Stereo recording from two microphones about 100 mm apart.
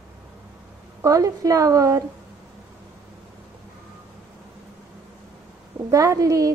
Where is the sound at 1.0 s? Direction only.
35° right (ahead or behind).